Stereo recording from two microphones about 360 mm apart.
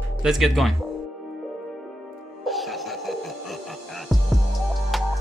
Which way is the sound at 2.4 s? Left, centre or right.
Centre.